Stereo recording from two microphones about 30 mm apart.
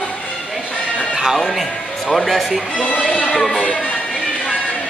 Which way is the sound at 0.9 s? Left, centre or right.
Right.